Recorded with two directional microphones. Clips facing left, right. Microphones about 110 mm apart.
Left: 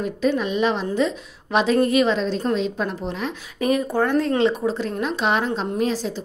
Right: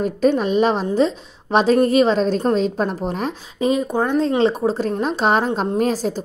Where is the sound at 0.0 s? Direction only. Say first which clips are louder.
Right 4 dB; 45° right (ahead or behind).